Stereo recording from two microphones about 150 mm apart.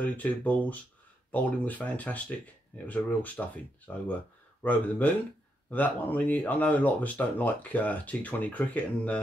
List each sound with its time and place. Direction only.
0.0 s speech: 10° left (ahead or behind)